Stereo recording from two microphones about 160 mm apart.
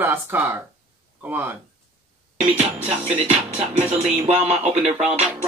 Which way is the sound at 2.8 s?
45° right (ahead or behind).